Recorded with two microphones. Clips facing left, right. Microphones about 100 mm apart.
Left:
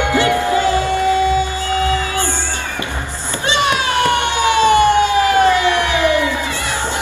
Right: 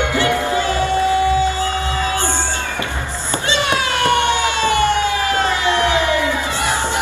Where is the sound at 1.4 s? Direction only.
20° right (ahead or behind).